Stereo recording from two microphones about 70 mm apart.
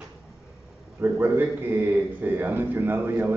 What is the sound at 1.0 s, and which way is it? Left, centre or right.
A man's voice, right.